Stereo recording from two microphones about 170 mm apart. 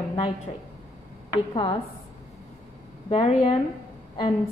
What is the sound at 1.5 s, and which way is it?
Speech, 30° left (ahead or behind).